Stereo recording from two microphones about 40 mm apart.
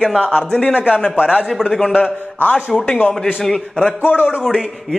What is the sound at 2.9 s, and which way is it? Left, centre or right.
Speech, centre.